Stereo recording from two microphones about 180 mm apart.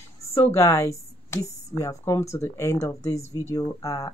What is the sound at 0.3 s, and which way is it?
Speech, 15° left (ahead or behind).